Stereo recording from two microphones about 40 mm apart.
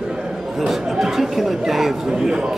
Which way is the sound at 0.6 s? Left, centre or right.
Centre.